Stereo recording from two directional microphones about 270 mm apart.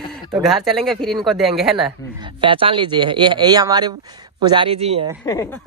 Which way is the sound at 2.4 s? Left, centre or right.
Centre.